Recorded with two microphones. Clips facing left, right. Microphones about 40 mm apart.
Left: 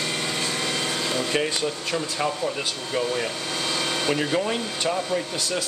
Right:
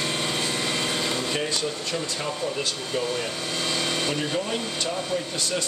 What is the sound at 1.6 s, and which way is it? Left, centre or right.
Speech, centre.